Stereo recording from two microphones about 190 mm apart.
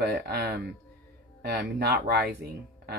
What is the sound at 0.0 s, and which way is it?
Speech, 60° right (ahead or behind).